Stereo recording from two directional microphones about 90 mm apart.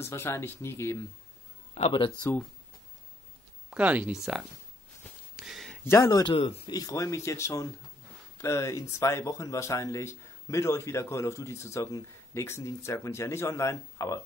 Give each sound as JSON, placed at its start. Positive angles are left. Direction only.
{"t": 0.0, "sound": "speech", "side_deg": 30}
{"t": 1.9, "sound": "speech", "side_deg": 80}
{"t": 3.7, "sound": "speech", "side_deg": -15}
{"t": 5.3, "sound": "a sound", "side_deg": -5}
{"t": 5.9, "sound": "speech", "side_deg": 30}
{"t": 6.2, "sound": "speech", "side_deg": 90}
{"t": 6.7, "sound": "speech", "side_deg": 40}